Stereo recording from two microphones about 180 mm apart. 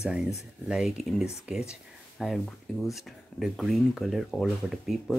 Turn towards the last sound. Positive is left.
turn(degrees=0)  # may be behind; listen again after turning